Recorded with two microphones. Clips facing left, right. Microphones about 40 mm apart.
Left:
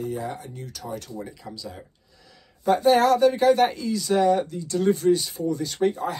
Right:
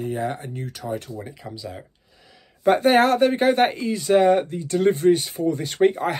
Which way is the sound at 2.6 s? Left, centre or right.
Right.